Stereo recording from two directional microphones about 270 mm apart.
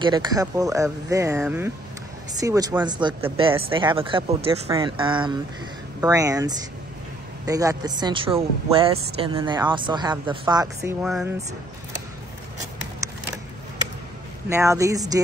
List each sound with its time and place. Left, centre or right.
0.0 s speech: centre
14.5 s speech: centre